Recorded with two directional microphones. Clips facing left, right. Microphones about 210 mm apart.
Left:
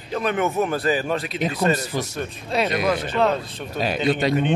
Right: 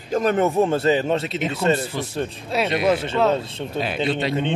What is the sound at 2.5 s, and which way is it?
Speech, 5° right (ahead or behind).